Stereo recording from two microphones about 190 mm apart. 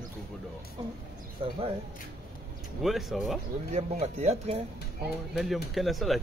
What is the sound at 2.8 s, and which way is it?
Speech, centre (ahead or behind).